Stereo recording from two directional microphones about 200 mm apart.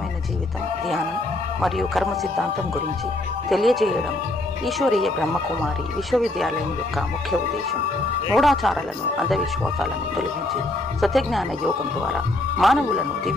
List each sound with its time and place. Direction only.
1.6 s speech: centre (ahead or behind)
3.4 s speech: centre (ahead or behind)
8.3 s speech: centre (ahead or behind)